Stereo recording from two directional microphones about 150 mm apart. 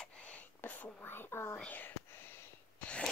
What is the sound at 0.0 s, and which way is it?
Whispering, 10° left (ahead or behind).